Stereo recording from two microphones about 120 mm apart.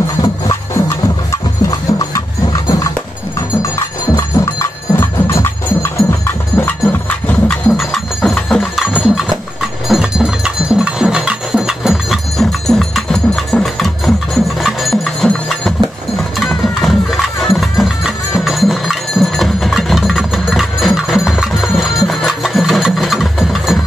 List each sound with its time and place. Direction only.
0.2 s music: 30° left (ahead or behind)
4.2 s music: 20° left (ahead or behind)
9.0 s a sound: 5° right (ahead or behind)
14.6 s music: centre (ahead or behind)